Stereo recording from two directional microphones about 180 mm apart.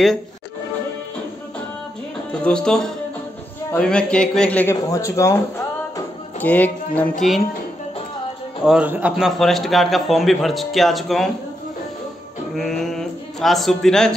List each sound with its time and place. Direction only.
2.4 s a man's voice: 5° left (ahead or behind)
4.8 s music: 20° left (ahead or behind)
7.0 s a man's voice: centre (ahead or behind)
8.6 s a man's voice: 5° right (ahead or behind)
12.5 s speech: centre (ahead or behind)